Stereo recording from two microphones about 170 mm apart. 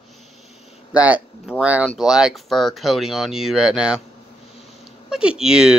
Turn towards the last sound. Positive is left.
turn(degrees=-5)  # may be behind; listen again after turning